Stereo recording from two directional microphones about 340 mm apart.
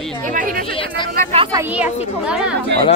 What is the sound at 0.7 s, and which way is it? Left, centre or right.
Speech, centre.